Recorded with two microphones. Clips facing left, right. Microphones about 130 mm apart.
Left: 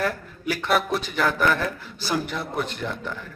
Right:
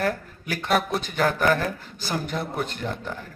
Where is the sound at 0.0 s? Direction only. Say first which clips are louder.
Even; 45° right (ahead or behind).